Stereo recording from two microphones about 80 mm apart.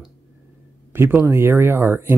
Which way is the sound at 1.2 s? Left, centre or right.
Right.